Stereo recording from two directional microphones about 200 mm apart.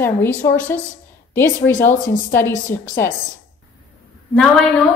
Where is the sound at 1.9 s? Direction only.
40° left (ahead or behind).